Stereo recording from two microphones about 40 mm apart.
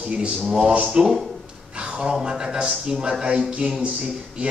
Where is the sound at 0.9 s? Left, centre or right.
Centre.